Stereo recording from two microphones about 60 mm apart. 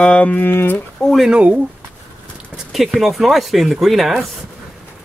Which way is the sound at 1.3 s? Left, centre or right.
Right.